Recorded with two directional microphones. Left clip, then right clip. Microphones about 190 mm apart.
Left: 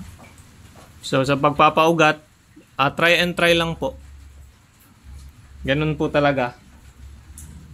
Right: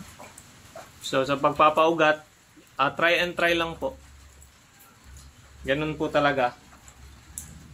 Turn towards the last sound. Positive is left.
turn(degrees=55)  # may be behind; listen again after turning